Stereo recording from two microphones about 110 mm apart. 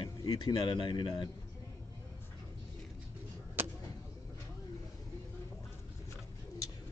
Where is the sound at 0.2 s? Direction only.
40° left (ahead or behind).